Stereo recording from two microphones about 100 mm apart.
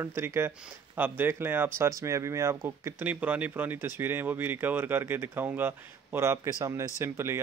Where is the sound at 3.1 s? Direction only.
15° right (ahead or behind).